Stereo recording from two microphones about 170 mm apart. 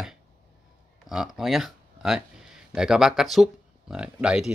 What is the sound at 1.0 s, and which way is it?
Speech, centre (ahead or behind).